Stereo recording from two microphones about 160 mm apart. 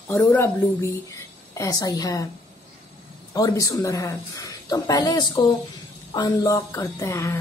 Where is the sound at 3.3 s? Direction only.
20° left (ahead or behind).